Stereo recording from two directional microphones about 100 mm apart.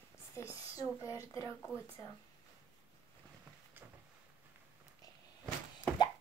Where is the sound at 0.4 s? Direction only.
30° left (ahead or behind).